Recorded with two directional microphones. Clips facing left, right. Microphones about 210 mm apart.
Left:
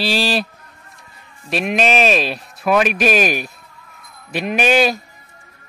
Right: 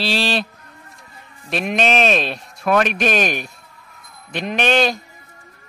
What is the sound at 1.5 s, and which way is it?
Speech, 5° left (ahead or behind).